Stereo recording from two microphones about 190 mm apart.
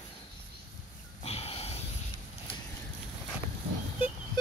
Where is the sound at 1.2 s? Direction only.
30° left (ahead or behind).